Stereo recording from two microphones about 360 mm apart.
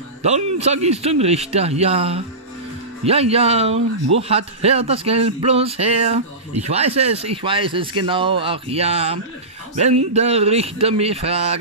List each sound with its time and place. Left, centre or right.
0.2 s speech: centre